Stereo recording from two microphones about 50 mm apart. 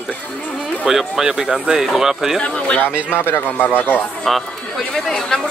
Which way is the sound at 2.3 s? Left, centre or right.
Left.